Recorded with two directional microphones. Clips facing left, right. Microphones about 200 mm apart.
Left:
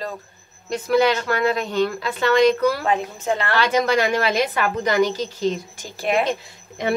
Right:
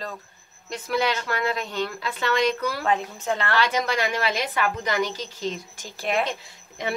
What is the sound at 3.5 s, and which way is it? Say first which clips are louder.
Speech: left 7 dB; 45° left (ahead or behind).